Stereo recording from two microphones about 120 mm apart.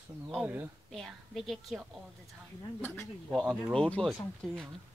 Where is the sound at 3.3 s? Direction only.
Centre (ahead or behind).